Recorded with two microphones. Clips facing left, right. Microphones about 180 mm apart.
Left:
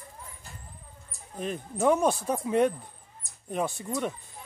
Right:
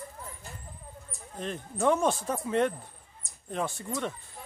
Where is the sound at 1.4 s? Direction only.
10° left (ahead or behind).